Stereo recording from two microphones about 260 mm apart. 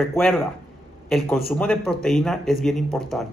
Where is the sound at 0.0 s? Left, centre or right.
Centre.